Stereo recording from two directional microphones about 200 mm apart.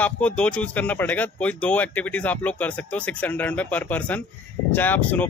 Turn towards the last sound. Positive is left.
turn(degrees=10)  # may be behind; listen again after turning